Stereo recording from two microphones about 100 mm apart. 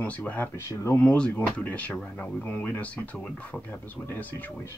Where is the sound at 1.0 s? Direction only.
15° left (ahead or behind).